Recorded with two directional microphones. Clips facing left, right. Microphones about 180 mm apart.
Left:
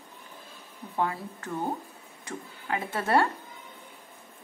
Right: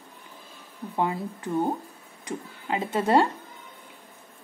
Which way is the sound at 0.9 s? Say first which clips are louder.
Right 3 dB; 15° right (ahead or behind).